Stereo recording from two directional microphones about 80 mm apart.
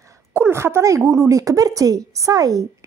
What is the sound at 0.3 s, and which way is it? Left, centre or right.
A woman's voice, right.